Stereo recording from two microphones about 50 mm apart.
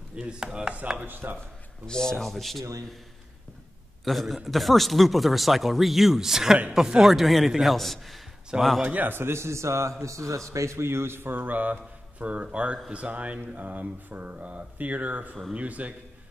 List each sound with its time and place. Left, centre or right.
0.1 s speech: right
1.0 s a man's voice: right
1.9 s speech: centre
4.0 s a man's voice: centre
8.8 s a man's voice: right
10.0 s a man's voice: right
11.4 s a man's voice: right